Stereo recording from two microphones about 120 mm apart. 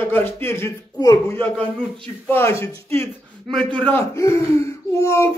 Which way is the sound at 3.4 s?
5° left (ahead or behind).